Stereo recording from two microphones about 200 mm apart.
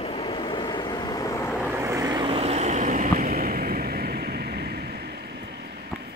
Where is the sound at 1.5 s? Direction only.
10° right (ahead or behind).